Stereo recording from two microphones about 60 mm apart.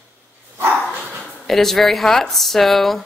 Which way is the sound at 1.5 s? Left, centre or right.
Centre.